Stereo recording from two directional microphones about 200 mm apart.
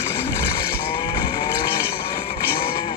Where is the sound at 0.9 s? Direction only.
25° left (ahead or behind).